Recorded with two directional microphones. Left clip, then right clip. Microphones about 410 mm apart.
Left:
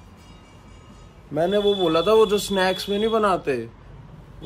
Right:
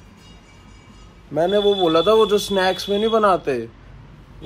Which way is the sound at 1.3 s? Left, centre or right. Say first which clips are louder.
Right 3 dB; centre.